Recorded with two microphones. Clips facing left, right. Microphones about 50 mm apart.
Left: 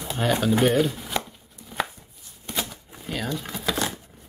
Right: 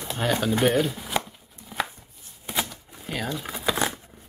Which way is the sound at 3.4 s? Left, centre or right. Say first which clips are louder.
Right 1 dB; centre.